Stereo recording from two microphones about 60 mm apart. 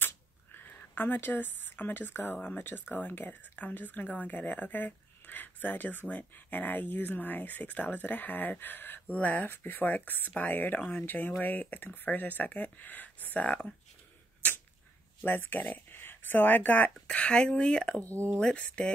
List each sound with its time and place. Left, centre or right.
0.0 s a sound: left
2.6 s speech: left
15.2 s speech: left
17.1 s speech: centre